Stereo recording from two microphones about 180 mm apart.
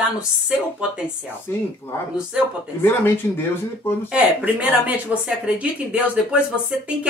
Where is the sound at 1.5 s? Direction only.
15° left (ahead or behind).